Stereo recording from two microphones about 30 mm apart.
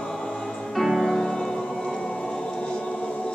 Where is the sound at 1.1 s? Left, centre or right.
Centre; by 2.8 s left.